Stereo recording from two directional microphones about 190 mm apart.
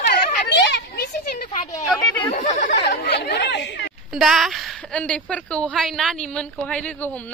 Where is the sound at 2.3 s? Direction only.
40° left (ahead or behind); by 3.9 s 65° left (ahead or behind).